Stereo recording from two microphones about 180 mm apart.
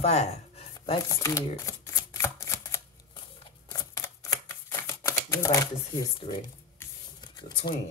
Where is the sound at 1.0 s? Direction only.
15° left (ahead or behind).